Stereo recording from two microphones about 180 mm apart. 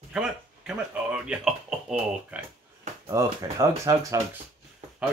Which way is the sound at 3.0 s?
20° right (ahead or behind).